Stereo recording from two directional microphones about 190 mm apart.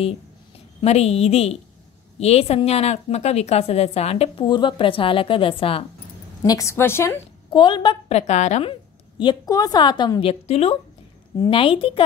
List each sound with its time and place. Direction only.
0.7 s a woman's voice: 35° left (ahead or behind)
6.4 s a woman's voice: 15° left (ahead or behind)
7.5 s a woman's voice: 25° left (ahead or behind)
9.2 s a woman's voice: 20° left (ahead or behind)